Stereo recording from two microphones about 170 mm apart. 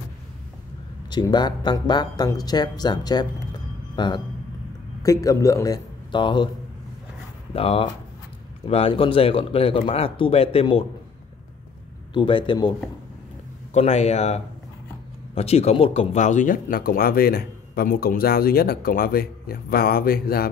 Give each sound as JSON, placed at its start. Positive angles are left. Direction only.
{"t": 1.1, "sound": "speech", "side_deg": 25}
{"t": 7.5, "sound": "speech", "side_deg": 35}
{"t": 12.1, "sound": "speech", "side_deg": 30}
{"t": 13.7, "sound": "speech", "side_deg": 40}